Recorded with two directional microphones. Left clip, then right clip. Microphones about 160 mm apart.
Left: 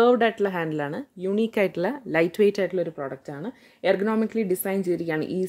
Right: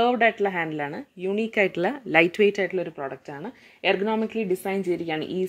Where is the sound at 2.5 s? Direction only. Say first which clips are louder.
Left 1 dB; 30° left (ahead or behind).